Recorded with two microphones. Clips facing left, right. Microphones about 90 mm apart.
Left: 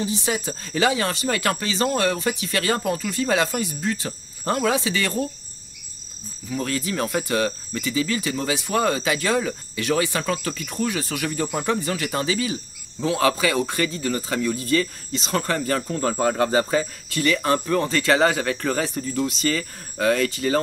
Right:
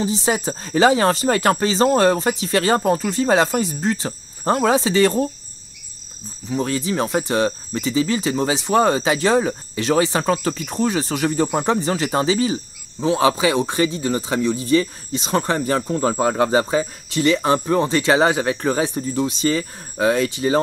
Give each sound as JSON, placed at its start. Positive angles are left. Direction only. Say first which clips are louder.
{"t": 0.0, "sound": "speech", "louder": "right 5 dB", "side_deg": -30}
{"t": 6.5, "sound": "speech", "louder": "right 4 dB", "side_deg": -25}